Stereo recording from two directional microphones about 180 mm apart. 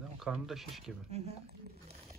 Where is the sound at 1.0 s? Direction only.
35° right (ahead or behind).